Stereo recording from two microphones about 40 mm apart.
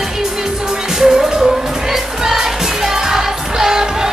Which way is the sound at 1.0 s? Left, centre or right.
Centre.